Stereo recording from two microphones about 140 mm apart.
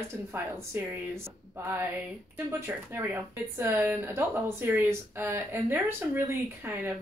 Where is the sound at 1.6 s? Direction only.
20° right (ahead or behind).